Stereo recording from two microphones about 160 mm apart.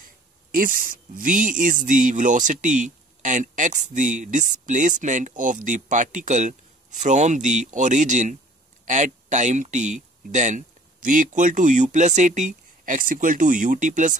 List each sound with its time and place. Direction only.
0.5 s speech: 60° right (ahead or behind)